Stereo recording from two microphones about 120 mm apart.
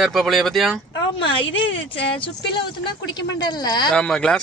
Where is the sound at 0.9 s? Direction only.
45° left (ahead or behind).